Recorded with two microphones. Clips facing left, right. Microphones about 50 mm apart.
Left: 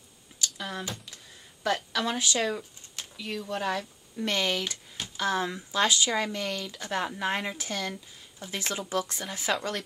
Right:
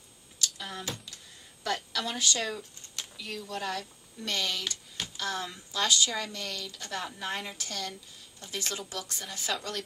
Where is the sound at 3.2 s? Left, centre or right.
Left; by 9.8 s centre.